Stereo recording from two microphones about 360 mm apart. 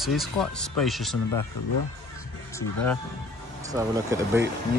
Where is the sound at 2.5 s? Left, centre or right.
Centre.